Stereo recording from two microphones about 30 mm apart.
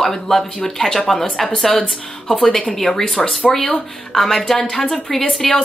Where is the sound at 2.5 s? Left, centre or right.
Left.